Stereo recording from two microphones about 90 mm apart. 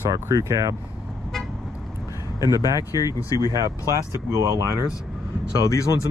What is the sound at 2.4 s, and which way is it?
Speech, 40° right (ahead or behind).